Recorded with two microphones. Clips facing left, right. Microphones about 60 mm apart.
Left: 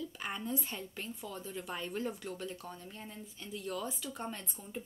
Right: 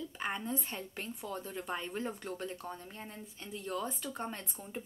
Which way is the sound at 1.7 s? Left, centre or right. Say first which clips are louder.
Right 1 dB; right.